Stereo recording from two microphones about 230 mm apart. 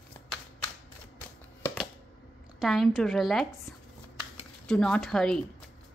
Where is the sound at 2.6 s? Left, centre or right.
Centre.